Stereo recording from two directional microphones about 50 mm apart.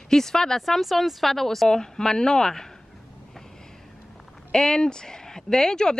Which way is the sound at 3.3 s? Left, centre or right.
Centre.